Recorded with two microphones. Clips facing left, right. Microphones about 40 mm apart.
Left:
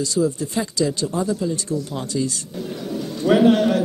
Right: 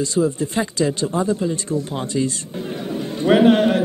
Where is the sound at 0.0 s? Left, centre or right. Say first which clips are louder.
Right 2 dB; right.